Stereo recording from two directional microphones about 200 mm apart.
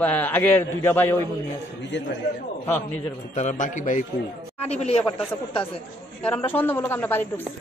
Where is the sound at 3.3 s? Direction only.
40° left (ahead or behind).